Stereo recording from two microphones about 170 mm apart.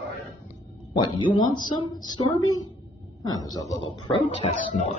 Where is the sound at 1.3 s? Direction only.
25° left (ahead or behind).